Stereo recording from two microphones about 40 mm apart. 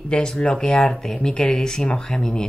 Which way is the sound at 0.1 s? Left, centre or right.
Left.